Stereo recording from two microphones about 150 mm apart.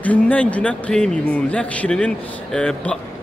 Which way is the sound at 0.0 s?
10° left (ahead or behind).